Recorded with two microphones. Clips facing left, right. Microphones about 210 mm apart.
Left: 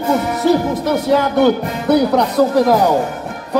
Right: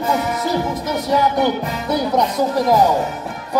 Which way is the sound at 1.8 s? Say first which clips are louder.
Left 6 dB; 65° left (ahead or behind).